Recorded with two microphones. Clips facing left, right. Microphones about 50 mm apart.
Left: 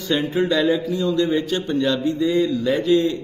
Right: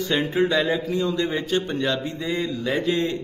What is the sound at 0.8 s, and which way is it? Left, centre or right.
Speech, right.